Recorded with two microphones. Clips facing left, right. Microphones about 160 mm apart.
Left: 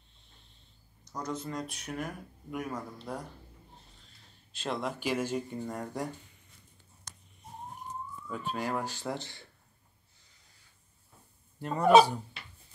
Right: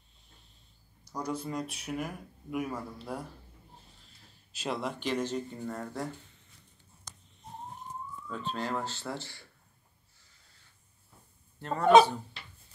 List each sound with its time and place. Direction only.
1.0 s speech: 10° right (ahead or behind)
4.0 s a sound: 5° right (ahead or behind)
5.0 s speech: 10° left (ahead or behind)
8.3 s speech: 10° left (ahead or behind)
11.6 s speech: 10° left (ahead or behind)